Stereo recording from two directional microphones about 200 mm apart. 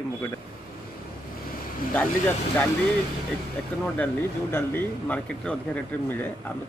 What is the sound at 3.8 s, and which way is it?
Speech, 10° left (ahead or behind).